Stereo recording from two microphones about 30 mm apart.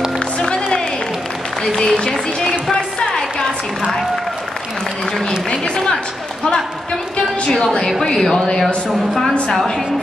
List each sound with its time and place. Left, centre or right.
0.2 s music: left
1.6 s a sound: centre
8.1 s speech: centre
8.5 s speech: left